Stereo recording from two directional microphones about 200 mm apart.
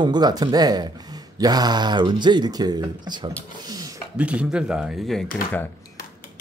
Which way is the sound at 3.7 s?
20° right (ahead or behind).